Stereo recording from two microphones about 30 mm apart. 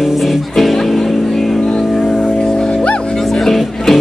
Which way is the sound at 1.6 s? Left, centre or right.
Left.